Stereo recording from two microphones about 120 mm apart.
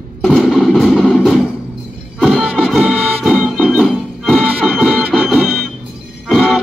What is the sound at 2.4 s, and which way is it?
Music, 5° right (ahead or behind).